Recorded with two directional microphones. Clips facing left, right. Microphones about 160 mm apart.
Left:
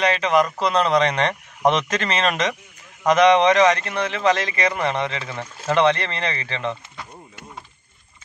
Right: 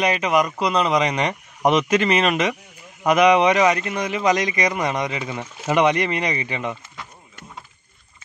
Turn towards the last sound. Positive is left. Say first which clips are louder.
# right 1 dB
turn(degrees=-15)  # may be behind; listen again after turning